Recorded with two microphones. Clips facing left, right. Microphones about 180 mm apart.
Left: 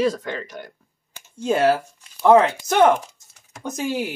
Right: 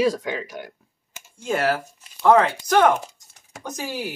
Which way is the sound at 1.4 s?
25° left (ahead or behind).